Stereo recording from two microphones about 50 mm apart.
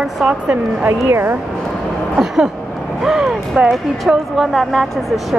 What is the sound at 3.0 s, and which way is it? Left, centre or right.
Speech, centre.